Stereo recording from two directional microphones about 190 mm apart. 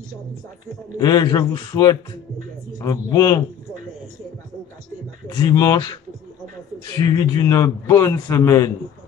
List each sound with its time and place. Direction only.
0.9 s a man's voice: 20° left (ahead or behind)
5.3 s a man's voice: 20° left (ahead or behind)
7.0 s a man's voice: 20° left (ahead or behind)